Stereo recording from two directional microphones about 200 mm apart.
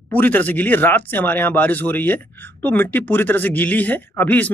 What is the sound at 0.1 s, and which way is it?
Speech, 10° left (ahead or behind).